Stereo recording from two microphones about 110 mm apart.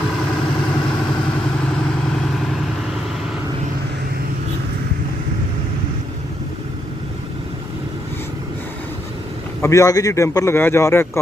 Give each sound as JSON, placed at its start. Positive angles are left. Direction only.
{"t": 9.6, "sound": "a man's voice", "side_deg": 25}